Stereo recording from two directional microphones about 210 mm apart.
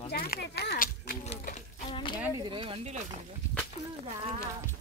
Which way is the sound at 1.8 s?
25° left (ahead or behind).